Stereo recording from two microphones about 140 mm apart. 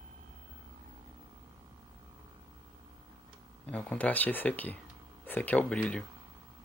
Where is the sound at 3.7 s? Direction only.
10° left (ahead or behind).